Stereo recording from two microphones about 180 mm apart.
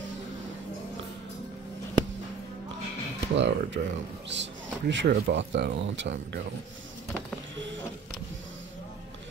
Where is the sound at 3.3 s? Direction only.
80° right.